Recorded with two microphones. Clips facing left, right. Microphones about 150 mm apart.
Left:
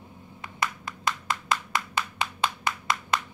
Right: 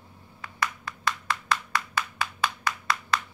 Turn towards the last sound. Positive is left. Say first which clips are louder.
# even
turn(degrees=20)  # may be behind; listen again after turning